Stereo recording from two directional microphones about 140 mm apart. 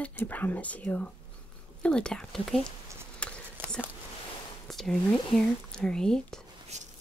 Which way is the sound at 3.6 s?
15° right (ahead or behind).